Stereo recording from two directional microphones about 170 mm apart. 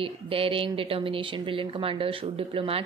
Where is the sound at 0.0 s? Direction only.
35° right (ahead or behind).